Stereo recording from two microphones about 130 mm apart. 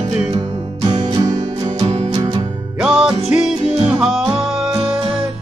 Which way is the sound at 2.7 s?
5° right (ahead or behind).